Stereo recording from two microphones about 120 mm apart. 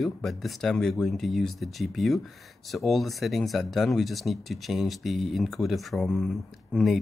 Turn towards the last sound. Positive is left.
turn(degrees=0)  # may be behind; listen again after turning